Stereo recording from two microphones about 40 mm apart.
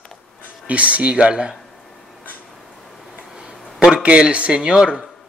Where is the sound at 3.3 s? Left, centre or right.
Centre.